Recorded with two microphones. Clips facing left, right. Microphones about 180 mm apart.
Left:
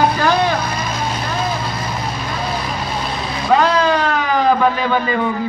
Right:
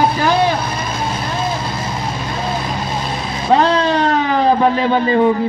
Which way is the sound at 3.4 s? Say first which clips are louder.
Right 1 dB; 30° right (ahead or behind).